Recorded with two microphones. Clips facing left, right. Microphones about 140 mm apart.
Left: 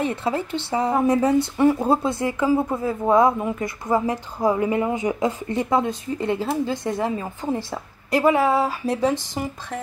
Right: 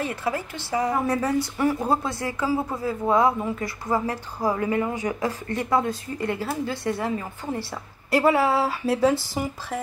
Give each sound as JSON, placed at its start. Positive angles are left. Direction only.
{"t": 0.0, "sound": "a woman's voice", "side_deg": 25}
{"t": 8.1, "sound": "speech", "side_deg": -5}